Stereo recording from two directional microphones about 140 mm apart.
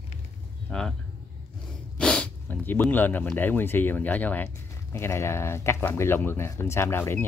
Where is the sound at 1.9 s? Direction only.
5° left (ahead or behind).